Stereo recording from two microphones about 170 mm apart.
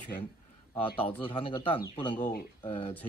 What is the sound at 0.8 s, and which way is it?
Speech, 30° left (ahead or behind).